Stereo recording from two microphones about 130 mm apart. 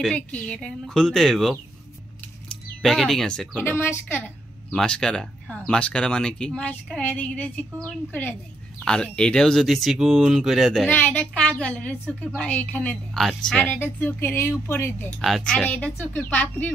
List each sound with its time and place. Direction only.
0.0 s speech: 5° left (ahead or behind)
2.8 s speech: centre (ahead or behind)
3.6 s a woman's voice: 15° left (ahead or behind)
4.6 s a woman's voice: 5° left (ahead or behind)
10.9 s a woman's voice: 15° left (ahead or behind)
15.1 s a woman's voice: centre (ahead or behind)